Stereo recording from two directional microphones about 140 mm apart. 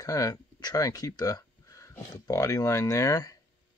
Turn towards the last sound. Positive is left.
turn(degrees=25)  # may be behind; listen again after turning